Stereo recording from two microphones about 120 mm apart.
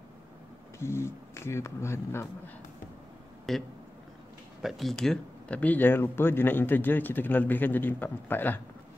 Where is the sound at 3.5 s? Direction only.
Centre (ahead or behind).